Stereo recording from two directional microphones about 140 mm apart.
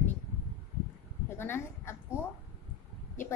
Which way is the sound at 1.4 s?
15° left (ahead or behind).